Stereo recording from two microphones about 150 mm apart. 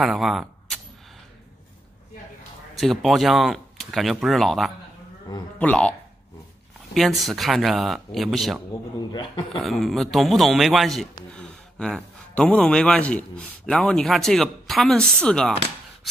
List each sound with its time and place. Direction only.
0.0 s speech: centre (ahead or behind)
2.8 s speech: centre (ahead or behind)
5.3 s speech: 25° left (ahead or behind)
5.6 s speech: 10° left (ahead or behind)
9.1 s a man's voice: 35° left (ahead or behind)
9.6 s speech: centre (ahead or behind)